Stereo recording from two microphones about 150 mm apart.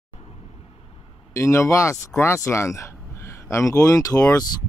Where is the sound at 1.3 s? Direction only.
20° left (ahead or behind).